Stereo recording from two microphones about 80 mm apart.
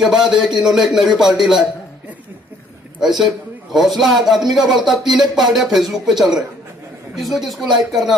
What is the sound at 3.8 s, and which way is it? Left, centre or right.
A man's voice, centre.